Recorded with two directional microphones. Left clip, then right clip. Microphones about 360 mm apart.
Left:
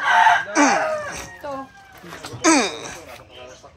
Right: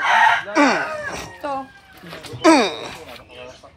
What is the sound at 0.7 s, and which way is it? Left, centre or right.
Chicken, centre.